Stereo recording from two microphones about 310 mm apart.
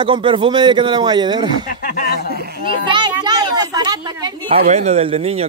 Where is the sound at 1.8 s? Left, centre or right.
Left.